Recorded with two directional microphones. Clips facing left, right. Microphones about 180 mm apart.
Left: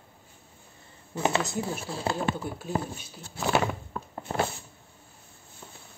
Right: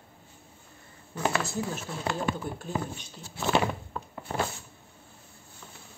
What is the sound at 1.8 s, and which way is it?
Speech, 30° left (ahead or behind).